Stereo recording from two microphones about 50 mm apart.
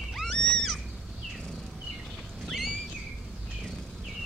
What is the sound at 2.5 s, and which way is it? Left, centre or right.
Boat, centre.